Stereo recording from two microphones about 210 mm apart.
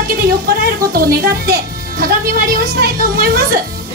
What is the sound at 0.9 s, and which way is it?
Speech, 45° right (ahead or behind).